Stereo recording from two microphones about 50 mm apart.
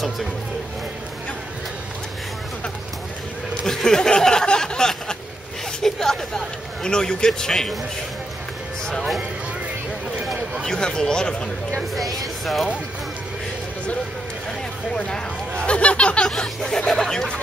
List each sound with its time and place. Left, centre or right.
3.6 s a sound: centre
5.8 s speech: centre
10.6 s speech: centre
11.9 s speech: centre
15.0 s speech: centre
16.3 s speech: centre